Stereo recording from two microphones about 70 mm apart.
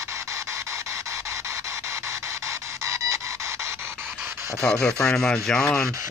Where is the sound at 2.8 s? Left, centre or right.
Right.